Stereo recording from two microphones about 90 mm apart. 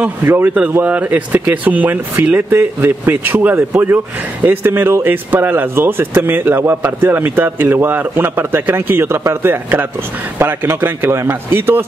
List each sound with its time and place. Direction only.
0.2 s speech: 25° right (ahead or behind)